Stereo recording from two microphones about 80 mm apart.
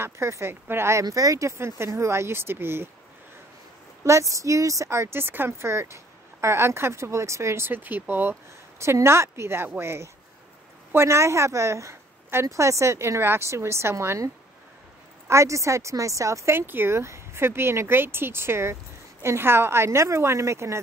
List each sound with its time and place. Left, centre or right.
0.0 s speech: right
1.0 s speech: right
4.0 s a woman's voice: right